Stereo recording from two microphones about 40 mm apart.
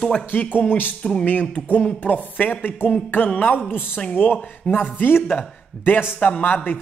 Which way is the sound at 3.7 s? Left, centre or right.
Left.